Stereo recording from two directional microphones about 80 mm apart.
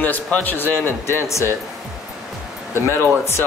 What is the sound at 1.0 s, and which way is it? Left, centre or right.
Speech, left.